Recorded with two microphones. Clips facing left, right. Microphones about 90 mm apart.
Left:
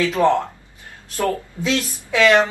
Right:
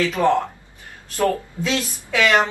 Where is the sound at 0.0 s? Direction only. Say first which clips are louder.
Left 1 dB; 20° left (ahead or behind).